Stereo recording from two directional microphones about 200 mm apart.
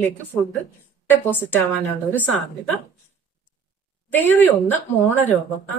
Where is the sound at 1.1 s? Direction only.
10° left (ahead or behind).